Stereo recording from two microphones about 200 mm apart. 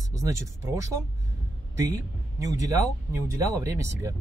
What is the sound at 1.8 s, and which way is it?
A man's voice, 15° right (ahead or behind).